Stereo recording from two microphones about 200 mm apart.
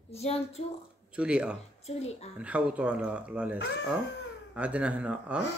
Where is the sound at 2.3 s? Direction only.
5° right (ahead or behind).